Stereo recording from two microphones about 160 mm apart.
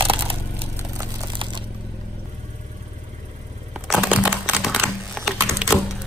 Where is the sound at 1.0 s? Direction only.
30° right (ahead or behind).